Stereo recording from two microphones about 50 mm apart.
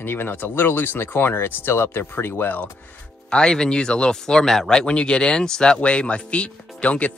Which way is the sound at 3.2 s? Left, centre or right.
Centre.